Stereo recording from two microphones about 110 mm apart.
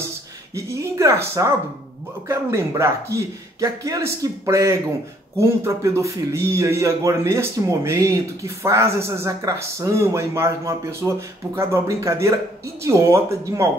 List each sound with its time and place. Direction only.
0.6 s speech: 25° right (ahead or behind)